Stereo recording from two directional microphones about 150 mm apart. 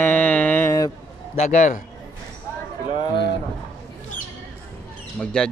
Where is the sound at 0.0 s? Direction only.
10° left (ahead or behind).